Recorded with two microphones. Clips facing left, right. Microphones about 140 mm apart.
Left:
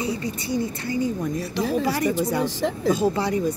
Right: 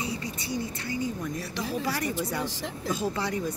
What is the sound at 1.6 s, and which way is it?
Speech, 90° left.